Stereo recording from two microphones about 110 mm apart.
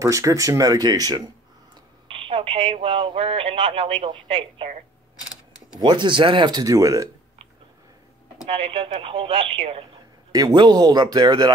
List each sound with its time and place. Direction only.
0.0 s speech: 30° right (ahead or behind)
2.0 s speech: 55° right (ahead or behind)
5.8 s speech: 45° right (ahead or behind)
8.5 s speech: 60° right (ahead or behind)
10.3 s speech: 40° right (ahead or behind)